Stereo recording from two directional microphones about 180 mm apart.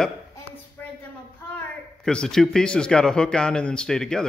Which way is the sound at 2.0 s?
5° left (ahead or behind).